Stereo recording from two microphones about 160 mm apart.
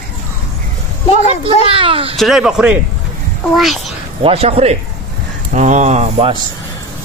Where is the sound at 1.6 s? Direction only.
35° right (ahead or behind).